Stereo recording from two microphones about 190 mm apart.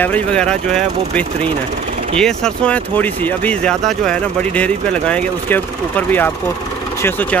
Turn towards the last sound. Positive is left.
turn(degrees=10)  # may be behind; listen again after turning